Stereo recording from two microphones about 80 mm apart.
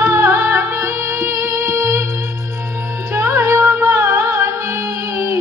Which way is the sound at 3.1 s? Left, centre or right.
Right.